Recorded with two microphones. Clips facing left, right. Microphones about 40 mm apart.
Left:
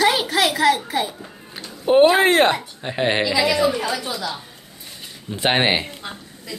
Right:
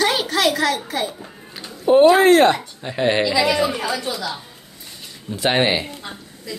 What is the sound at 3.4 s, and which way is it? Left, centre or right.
Speech, centre.